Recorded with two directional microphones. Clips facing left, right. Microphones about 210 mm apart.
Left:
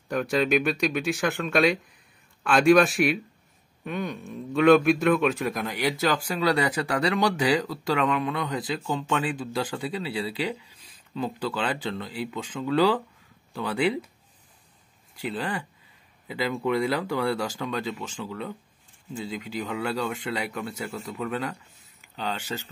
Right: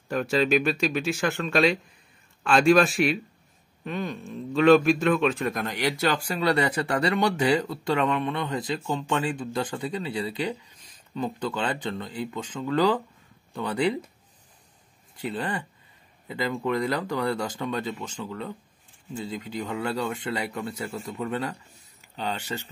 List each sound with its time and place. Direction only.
0.1 s speech: centre (ahead or behind)
15.2 s speech: centre (ahead or behind)